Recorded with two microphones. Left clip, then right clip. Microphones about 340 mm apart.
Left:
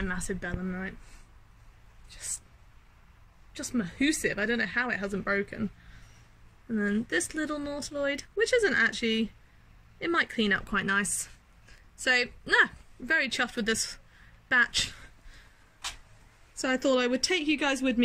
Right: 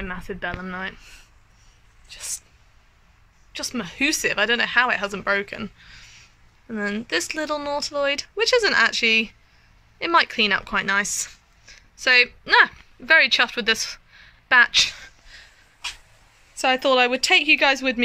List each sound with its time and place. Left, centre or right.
0.0 s speech: centre
0.7 s speech: right
3.5 s speech: centre
6.9 s speech: centre
11.6 s a sound: centre
12.5 s speech: centre
16.6 s speech: centre